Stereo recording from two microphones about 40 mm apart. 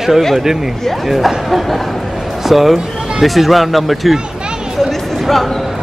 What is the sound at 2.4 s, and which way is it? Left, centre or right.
Speech, centre.